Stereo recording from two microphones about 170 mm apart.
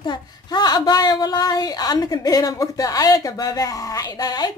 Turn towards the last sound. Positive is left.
turn(degrees=20)  # may be behind; listen again after turning